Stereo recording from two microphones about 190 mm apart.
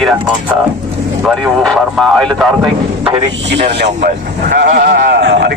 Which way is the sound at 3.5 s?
65° right (ahead or behind).